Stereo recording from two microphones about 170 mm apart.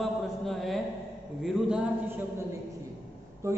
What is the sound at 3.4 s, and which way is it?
Speech, 15° right (ahead or behind).